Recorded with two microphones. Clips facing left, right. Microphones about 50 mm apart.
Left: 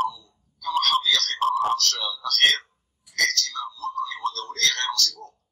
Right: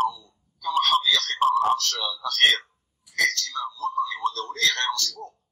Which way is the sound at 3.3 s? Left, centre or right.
Right.